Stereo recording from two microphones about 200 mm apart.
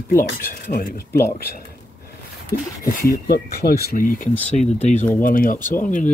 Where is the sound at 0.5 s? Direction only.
50° left (ahead or behind).